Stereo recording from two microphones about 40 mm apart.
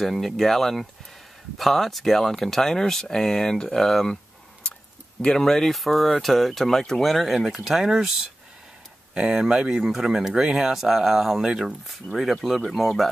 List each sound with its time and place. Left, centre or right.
0.0 s speech: centre
5.2 s speech: centre
7.1 s speech: centre
9.3 s speech: centre
12.6 s speech: centre